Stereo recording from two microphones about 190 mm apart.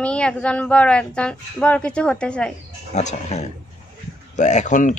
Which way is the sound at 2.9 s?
35° left (ahead or behind).